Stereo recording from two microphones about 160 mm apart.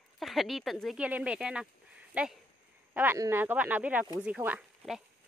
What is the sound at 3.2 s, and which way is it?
A woman's voice, 15° right (ahead or behind).